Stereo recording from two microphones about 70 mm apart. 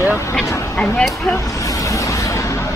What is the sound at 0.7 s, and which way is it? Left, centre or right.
Music, centre.